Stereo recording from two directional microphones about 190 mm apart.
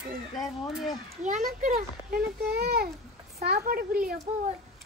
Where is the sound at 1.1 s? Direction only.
40° right (ahead or behind).